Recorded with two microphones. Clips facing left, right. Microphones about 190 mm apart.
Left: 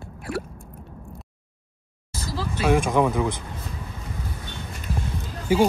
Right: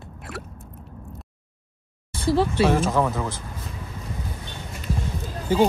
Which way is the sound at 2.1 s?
30° right (ahead or behind).